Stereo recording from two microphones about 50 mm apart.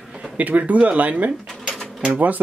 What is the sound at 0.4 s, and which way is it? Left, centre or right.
Speech, right.